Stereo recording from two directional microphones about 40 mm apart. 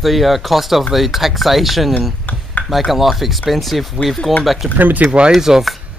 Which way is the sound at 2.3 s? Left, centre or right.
Left.